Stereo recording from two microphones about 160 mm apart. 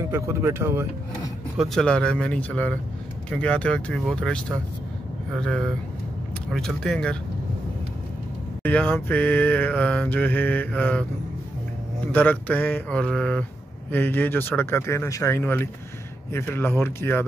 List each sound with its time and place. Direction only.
0.1 s speech: 15° right (ahead or behind)
1.6 s mantra: 5° left (ahead or behind)
5.4 s speech: 5° left (ahead or behind)
8.6 s mantra: 10° left (ahead or behind)
12.1 s mantra: 10° left (ahead or behind)